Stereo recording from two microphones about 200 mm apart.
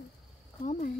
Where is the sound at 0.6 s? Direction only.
40° left (ahead or behind).